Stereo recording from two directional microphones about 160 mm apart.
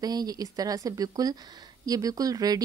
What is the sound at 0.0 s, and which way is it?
A woman's voice, 25° right (ahead or behind).